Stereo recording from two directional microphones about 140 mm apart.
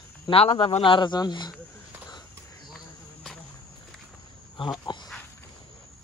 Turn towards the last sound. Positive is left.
turn(degrees=35)  # may be behind; listen again after turning